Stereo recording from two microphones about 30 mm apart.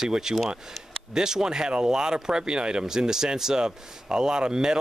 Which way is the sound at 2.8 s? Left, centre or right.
Centre.